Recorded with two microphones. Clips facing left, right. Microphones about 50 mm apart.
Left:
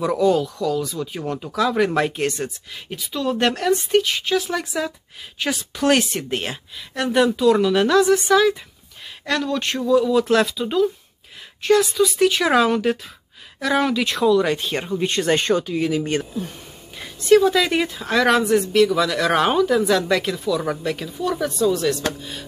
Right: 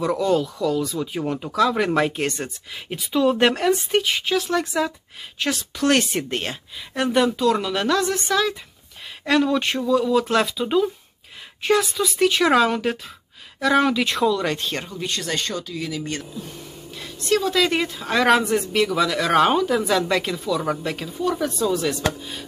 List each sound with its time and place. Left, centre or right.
0.0 s a woman's voice: centre
2.9 s a woman's voice: centre
9.2 s a woman's voice: centre
14.9 s speech: left
17.0 s a woman's voice: centre